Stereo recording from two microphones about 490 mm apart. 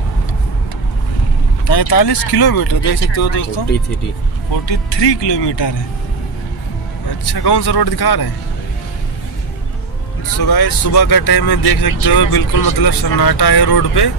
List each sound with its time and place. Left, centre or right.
1.7 s speech: left
4.6 s speech: left
7.3 s speech: left
10.4 s speech: left